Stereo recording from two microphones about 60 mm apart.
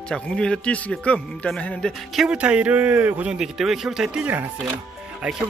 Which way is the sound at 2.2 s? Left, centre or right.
Centre.